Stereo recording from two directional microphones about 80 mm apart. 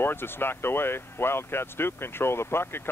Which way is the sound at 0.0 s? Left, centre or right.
Left.